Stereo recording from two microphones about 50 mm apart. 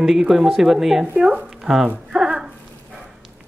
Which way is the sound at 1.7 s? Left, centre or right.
Right.